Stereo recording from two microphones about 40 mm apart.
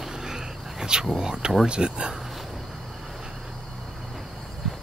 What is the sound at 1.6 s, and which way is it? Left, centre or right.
Speech, right.